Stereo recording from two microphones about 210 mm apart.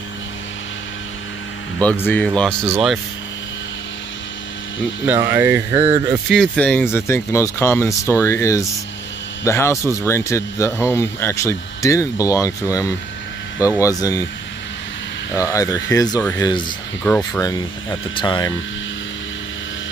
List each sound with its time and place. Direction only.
1.8 s speech: 5° left (ahead or behind)
5.0 s speech: 10° right (ahead or behind)
6.2 s speech: centre (ahead or behind)
15.3 s speech: 15° left (ahead or behind)
17.0 s speech: 10° left (ahead or behind)